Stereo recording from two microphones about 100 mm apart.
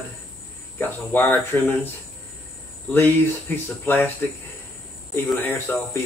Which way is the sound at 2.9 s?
20° left (ahead or behind).